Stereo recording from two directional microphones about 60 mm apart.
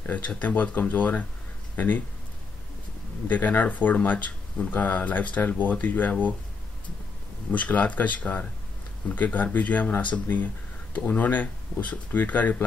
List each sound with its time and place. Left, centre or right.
0.4 s speech: left
3.3 s speech: left
7.5 s speech: left